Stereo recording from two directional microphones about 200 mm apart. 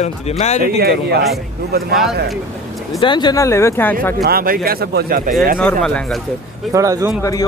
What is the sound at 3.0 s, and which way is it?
Speech, 25° left (ahead or behind).